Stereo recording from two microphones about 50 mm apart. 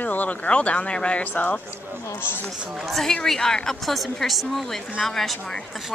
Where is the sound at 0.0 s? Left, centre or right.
Left.